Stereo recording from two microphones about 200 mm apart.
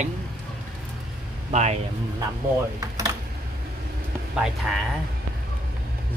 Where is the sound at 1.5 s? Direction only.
35° right (ahead or behind).